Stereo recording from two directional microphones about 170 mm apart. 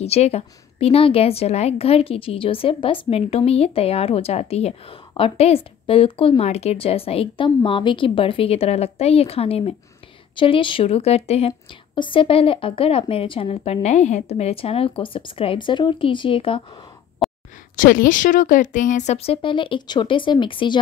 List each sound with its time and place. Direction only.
0.0 s a woman's voice: 40° left (ahead or behind)
17.2 s a sound: centre (ahead or behind)
17.7 s a woman's voice: 55° left (ahead or behind); by 20.8 s 30° left (ahead or behind)